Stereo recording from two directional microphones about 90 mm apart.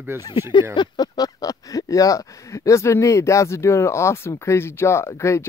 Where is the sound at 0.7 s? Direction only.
55° left (ahead or behind); by 5.5 s 30° left (ahead or behind).